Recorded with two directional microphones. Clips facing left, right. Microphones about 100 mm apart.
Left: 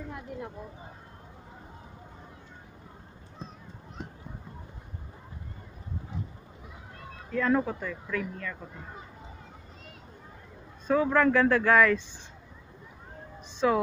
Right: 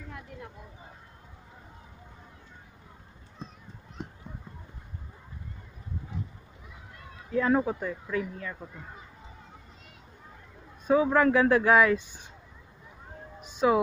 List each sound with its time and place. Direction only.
7.3 s speech: 15° right (ahead or behind)
10.9 s speech: 10° right (ahead or behind)
13.4 s emergency vehicle: 15° right (ahead or behind)